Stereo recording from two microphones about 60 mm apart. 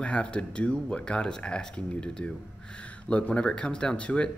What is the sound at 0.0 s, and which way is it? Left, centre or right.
A man's voice, centre.